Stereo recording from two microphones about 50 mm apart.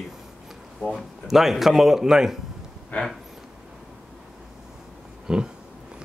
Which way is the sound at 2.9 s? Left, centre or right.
Left.